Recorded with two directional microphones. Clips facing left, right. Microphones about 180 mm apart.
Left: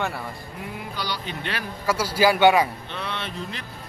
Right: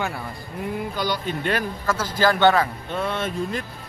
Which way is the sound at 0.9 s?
50° right (ahead or behind).